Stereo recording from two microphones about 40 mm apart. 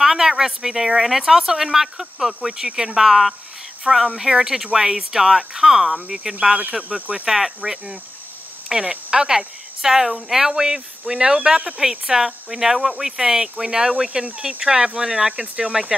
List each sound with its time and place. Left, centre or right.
0.0 s a woman's voice: centre
6.9 s speech: right
7.2 s a woman's voice: centre